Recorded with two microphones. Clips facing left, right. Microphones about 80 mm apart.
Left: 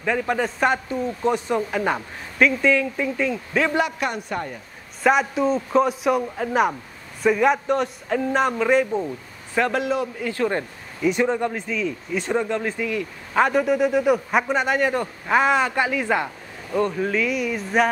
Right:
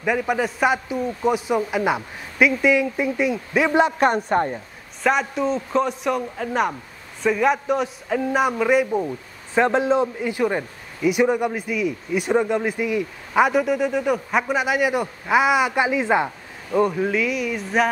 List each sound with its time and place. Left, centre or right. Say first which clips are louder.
0.0 s a man's voice: right 1 dB; centre
3.8 s a man's voice: right 7 dB; right
5.0 s a man's voice: left 2 dB; centre
9.5 s a man's voice: right 4 dB; right
13.3 s a man's voice: right 1 dB; centre